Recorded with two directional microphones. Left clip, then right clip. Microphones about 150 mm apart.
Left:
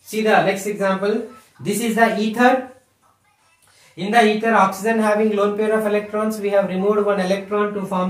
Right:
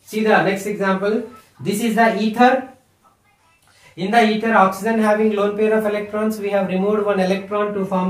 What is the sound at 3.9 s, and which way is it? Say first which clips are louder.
A man's voice: even; 20° right (ahead or behind).